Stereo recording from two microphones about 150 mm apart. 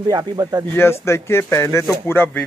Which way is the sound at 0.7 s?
15° left (ahead or behind).